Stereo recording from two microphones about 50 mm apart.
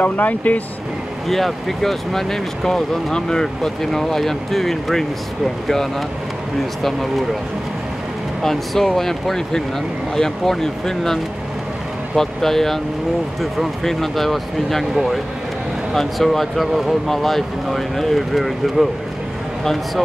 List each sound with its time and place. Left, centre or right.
0.0 s speech: left
1.3 s speech: centre
8.4 s speech: centre
12.2 s speech: centre